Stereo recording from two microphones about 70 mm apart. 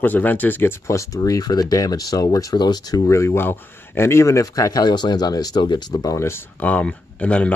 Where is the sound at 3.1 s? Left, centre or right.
Left.